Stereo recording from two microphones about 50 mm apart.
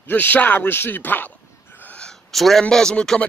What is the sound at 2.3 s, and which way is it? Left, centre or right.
Speech, centre.